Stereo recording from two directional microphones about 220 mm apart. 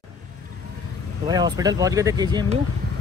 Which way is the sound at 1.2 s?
20° right (ahead or behind).